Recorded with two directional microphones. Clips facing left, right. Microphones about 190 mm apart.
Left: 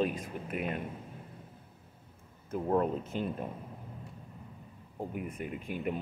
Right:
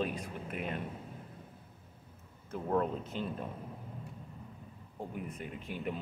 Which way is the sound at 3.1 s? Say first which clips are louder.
Left 3 dB; 45° left (ahead or behind).